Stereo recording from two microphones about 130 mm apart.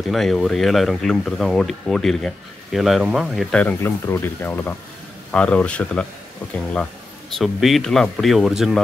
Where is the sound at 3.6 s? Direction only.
15° left (ahead or behind).